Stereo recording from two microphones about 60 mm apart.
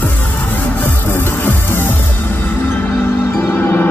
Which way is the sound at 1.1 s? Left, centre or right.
Left.